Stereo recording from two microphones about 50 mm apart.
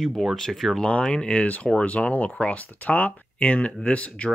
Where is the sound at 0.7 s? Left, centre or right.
Centre.